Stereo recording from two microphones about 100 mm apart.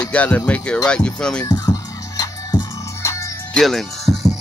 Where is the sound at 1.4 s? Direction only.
40° left (ahead or behind).